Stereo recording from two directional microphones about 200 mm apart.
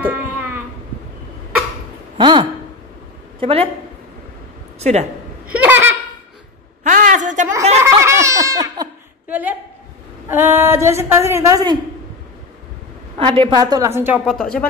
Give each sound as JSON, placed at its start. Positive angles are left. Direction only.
{"t": 0.0, "sound": "a sound", "side_deg": -10}
{"t": 2.1, "sound": "a woman's voice", "side_deg": -25}
{"t": 4.7, "sound": "a woman's voice", "side_deg": -35}
{"t": 5.5, "sound": "laughter", "side_deg": -10}
{"t": 6.8, "sound": "a sound", "side_deg": -40}
{"t": 7.8, "sound": "giggle", "side_deg": -15}
{"t": 9.3, "sound": "a sound", "side_deg": -10}
{"t": 10.2, "sound": "a woman's voice", "side_deg": -10}
{"t": 13.2, "sound": "a woman's voice", "side_deg": -25}